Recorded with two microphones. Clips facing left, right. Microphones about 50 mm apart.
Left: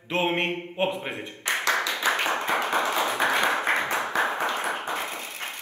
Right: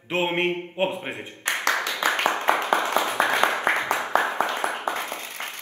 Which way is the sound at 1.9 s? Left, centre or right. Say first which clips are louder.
Right 2 dB; right.